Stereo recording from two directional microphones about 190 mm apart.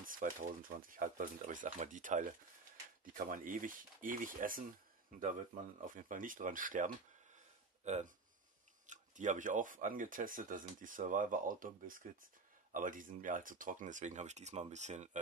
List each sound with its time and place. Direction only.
0.0 s speech: 45° right (ahead or behind)
5.9 s speech: 45° right (ahead or behind)
7.3 s a sound: 40° right (ahead or behind)
8.8 s speech: 40° right (ahead or behind)